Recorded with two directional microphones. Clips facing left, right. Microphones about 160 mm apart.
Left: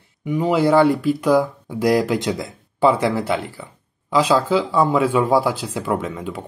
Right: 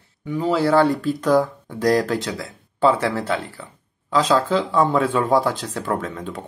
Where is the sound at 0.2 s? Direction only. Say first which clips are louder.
Left 2 dB; 15° left (ahead or behind).